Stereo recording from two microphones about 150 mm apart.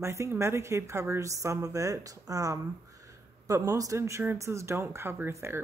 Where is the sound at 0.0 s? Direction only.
20° right (ahead or behind).